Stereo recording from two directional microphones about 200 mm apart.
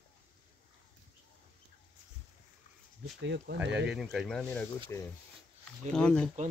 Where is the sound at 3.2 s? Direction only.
60° right (ahead or behind).